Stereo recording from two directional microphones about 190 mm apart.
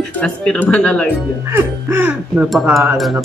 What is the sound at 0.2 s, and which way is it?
Speech, 5° left (ahead or behind).